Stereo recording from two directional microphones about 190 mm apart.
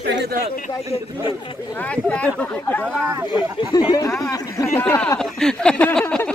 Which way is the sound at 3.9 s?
15° left (ahead or behind).